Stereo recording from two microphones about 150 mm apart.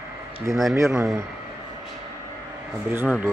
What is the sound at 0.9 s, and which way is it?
Speech, 5° right (ahead or behind).